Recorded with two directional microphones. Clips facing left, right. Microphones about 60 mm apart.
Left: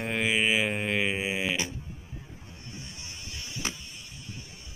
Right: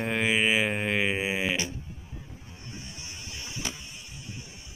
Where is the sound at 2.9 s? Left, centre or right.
Centre.